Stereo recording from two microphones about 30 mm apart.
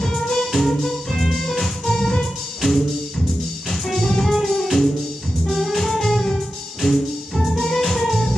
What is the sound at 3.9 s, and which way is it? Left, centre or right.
Music, centre.